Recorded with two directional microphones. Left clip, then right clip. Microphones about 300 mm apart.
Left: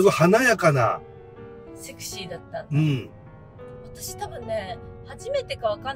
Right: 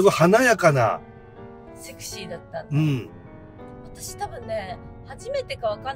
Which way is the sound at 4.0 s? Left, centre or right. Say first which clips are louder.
Right 2 dB; centre.